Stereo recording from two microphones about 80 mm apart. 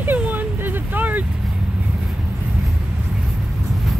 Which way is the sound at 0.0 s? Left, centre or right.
Right.